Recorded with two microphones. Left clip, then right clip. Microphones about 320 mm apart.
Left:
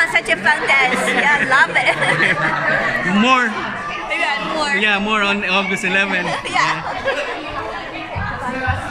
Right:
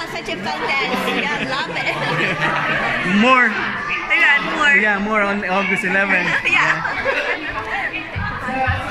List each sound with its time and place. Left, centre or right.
0.1 s chatter: left
3.2 s a man's voice: centre
4.1 s a sound: centre
4.8 s a man's voice: centre